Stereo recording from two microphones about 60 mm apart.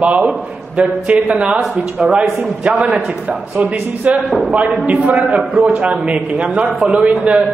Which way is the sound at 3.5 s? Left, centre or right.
Right.